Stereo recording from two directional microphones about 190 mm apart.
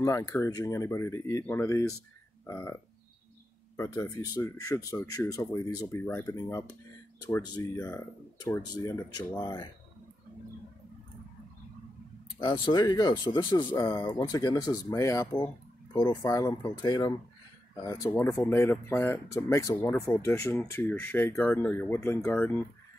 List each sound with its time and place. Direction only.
0.0 s speech: 15° left (ahead or behind)
3.7 s speech: 15° left (ahead or behind)
12.4 s speech: 25° left (ahead or behind); by 22.7 s 10° left (ahead or behind)